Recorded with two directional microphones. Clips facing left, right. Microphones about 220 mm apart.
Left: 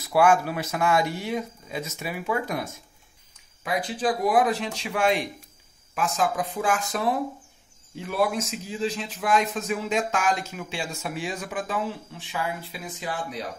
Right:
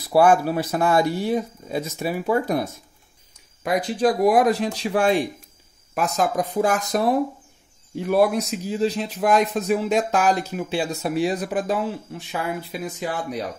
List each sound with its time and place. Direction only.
0.1 s a man's voice: 35° right (ahead or behind)
12.8 s speech: 50° right (ahead or behind)